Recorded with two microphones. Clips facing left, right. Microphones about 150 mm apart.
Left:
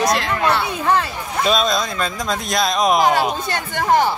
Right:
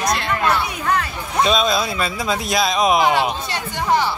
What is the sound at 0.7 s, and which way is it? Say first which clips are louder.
Speech: left 3 dB; 25° left (ahead or behind).